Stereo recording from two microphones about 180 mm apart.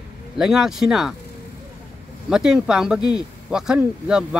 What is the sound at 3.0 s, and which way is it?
Speech, 25° left (ahead or behind).